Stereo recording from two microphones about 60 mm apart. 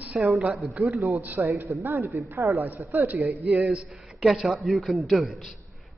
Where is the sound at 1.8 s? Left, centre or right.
Right.